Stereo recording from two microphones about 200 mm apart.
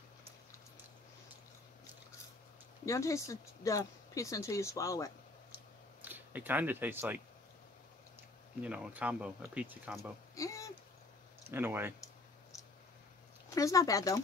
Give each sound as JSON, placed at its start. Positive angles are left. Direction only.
{"t": 2.8, "sound": "speech", "side_deg": 15}
{"t": 6.0, "sound": "speech", "side_deg": -10}
{"t": 8.5, "sound": "speech", "side_deg": -5}
{"t": 10.3, "sound": "speech", "side_deg": 15}
{"t": 11.5, "sound": "speech", "side_deg": -10}
{"t": 13.6, "sound": "speech", "side_deg": 15}